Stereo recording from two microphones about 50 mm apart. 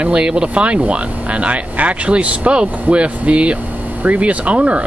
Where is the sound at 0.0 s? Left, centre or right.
Centre.